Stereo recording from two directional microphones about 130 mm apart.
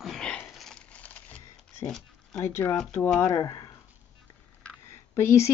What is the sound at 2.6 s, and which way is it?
Speech, 5° left (ahead or behind).